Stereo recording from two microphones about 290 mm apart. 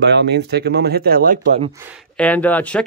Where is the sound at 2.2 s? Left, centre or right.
Centre.